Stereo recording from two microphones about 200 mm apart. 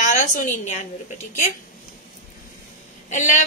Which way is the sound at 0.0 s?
40° left (ahead or behind).